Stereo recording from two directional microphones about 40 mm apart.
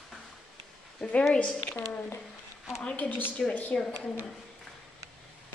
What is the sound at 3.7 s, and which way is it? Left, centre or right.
Speech, left.